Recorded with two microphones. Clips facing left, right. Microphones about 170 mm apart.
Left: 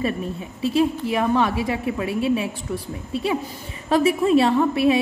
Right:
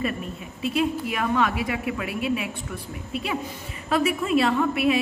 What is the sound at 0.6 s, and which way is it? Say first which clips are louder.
A woman's voice: left 4 dB; 30° left (ahead or behind).